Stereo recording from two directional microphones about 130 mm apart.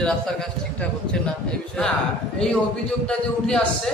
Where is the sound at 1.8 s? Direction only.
10° left (ahead or behind).